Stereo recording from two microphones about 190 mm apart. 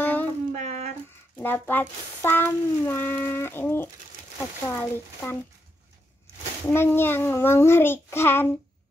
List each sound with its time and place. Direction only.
0.0 s music: 10° left (ahead or behind)
0.5 s a sound: 40° right (ahead or behind)
1.4 s speech: 10° left (ahead or behind)
6.7 s speech: 10° left (ahead or behind)